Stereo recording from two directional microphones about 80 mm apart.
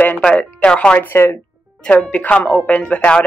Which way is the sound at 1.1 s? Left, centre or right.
Left.